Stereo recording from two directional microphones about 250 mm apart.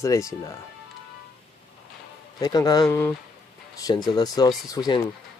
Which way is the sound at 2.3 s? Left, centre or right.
Centre.